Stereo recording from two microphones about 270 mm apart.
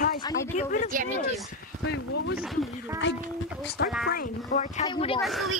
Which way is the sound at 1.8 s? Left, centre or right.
Left.